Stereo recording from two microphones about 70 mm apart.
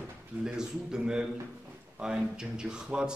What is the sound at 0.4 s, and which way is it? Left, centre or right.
A man's voice, centre.